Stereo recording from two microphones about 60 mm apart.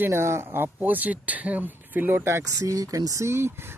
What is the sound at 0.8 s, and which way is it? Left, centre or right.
Speech, right.